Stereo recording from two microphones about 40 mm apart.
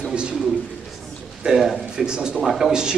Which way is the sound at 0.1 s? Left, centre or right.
Right.